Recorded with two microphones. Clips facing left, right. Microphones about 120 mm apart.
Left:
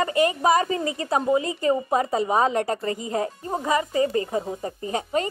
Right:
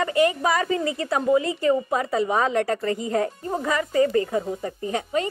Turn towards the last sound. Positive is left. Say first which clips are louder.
# even
turn(degrees=35)  # may be behind; listen again after turning